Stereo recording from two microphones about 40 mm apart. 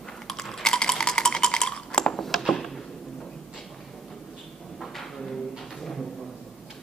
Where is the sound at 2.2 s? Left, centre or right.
Centre.